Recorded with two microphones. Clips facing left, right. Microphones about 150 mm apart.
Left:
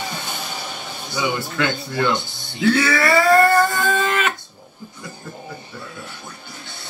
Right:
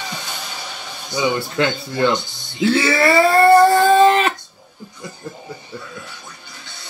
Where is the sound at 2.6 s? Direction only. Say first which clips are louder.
Right 2 dB; 25° right (ahead or behind).